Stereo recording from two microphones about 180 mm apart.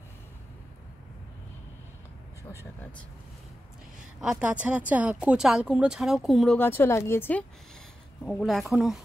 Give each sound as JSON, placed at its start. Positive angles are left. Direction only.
{"t": 4.2, "sound": "speech", "side_deg": -5}